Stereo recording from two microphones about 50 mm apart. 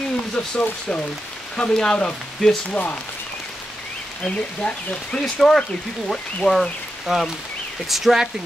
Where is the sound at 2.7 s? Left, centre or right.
Left.